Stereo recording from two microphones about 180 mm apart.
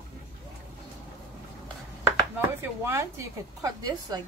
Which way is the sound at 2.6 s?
15° right (ahead or behind).